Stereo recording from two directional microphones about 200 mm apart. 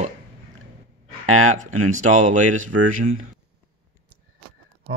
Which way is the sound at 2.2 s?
35° right (ahead or behind).